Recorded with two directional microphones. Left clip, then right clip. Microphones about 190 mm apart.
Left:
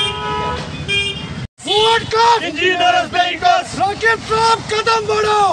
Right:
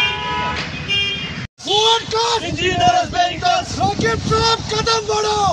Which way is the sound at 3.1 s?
25° left (ahead or behind).